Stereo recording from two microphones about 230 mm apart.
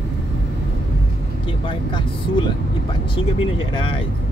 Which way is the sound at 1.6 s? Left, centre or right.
Left.